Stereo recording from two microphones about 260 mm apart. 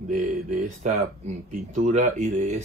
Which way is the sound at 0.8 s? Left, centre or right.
Right.